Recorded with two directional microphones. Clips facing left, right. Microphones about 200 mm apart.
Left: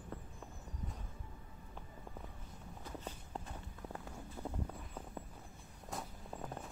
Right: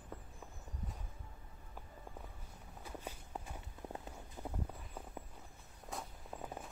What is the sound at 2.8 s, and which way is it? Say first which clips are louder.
Walk: even; 10° right (ahead or behind).